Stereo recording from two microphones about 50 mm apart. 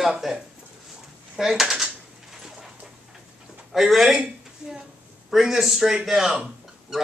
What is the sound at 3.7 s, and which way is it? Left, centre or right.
Speech, centre.